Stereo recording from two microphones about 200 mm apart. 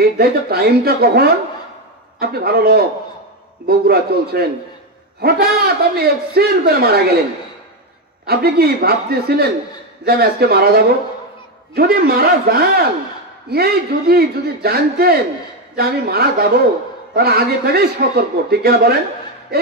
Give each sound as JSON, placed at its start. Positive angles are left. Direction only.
{"t": 0.0, "sound": "a man's voice", "side_deg": -50}
{"t": 8.3, "sound": "a man's voice", "side_deg": -50}